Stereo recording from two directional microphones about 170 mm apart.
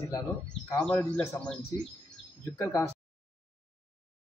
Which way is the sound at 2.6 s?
20° left (ahead or behind).